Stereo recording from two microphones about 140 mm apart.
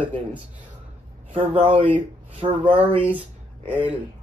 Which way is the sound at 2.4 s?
35° right (ahead or behind).